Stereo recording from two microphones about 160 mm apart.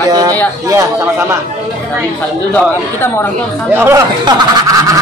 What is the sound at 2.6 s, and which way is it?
Speech, 15° left (ahead or behind).